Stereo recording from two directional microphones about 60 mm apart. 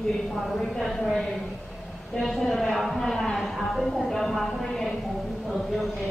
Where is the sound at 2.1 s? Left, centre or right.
Centre.